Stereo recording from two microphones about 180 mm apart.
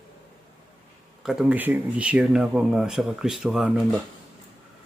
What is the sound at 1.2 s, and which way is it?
Speech, 5° right (ahead or behind).